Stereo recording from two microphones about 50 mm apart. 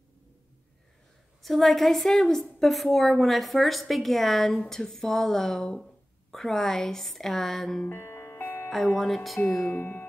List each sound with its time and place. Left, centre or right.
1.4 s a woman's voice: centre
7.9 s music: left
8.4 s music: left
8.6 s a woman's voice: centre
9.8 s music: left